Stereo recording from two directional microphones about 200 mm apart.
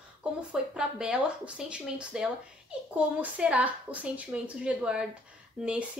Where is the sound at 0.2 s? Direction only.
5° right (ahead or behind).